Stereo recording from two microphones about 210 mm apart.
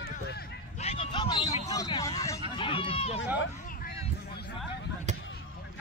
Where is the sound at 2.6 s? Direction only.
25° left (ahead or behind).